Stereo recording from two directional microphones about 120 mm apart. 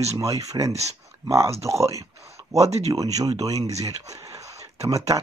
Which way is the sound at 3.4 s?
30° right (ahead or behind).